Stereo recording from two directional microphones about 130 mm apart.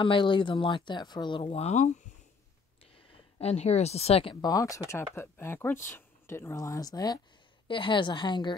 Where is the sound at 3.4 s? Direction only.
55° left (ahead or behind); by 7.2 s 30° left (ahead or behind).